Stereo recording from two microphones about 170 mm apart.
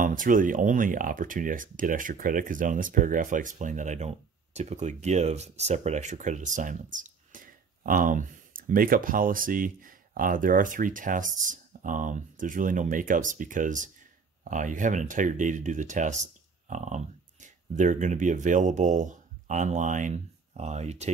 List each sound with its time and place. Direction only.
0.0 s speech: 50° right (ahead or behind)